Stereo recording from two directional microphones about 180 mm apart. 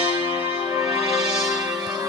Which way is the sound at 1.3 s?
Centre (ahead or behind).